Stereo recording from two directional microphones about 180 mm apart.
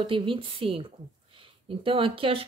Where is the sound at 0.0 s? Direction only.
30° right (ahead or behind).